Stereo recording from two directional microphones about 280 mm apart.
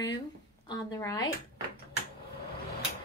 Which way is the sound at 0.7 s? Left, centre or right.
Centre.